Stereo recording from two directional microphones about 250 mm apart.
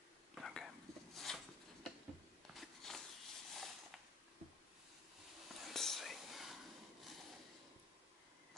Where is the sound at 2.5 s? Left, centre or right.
Centre.